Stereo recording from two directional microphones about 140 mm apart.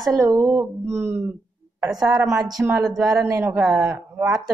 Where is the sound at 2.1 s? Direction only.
25° right (ahead or behind).